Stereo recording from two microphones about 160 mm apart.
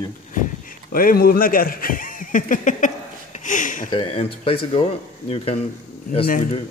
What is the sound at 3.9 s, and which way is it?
Speech, 35° left (ahead or behind).